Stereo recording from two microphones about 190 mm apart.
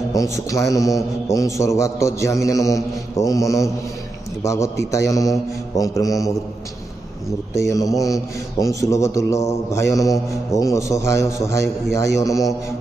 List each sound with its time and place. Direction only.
0.1 s a man's voice: 15° left (ahead or behind)
7.6 s a man's voice: 20° left (ahead or behind)